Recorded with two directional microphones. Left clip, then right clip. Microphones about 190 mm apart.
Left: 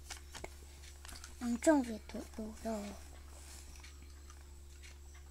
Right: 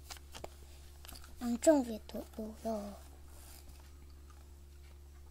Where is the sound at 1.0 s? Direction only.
20° right (ahead or behind).